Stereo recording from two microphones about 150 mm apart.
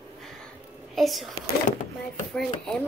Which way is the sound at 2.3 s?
5° left (ahead or behind).